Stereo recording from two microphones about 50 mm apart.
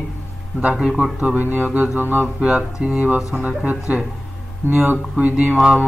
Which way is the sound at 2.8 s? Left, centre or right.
Right.